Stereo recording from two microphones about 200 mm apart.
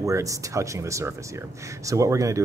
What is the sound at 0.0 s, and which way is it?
Speech, 15° right (ahead or behind).